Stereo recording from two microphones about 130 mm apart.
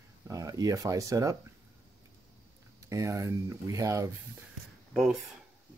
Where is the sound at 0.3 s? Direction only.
30° right (ahead or behind).